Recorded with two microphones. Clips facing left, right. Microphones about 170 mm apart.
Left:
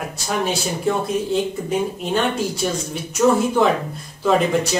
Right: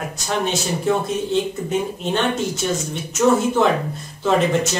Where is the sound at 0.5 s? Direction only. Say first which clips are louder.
Right 3 dB; centre (ahead or behind).